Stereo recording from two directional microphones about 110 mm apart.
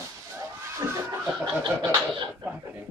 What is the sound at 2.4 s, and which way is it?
Speech, 15° right (ahead or behind).